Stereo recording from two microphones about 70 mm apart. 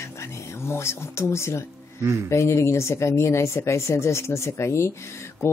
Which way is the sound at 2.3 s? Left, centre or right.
Left.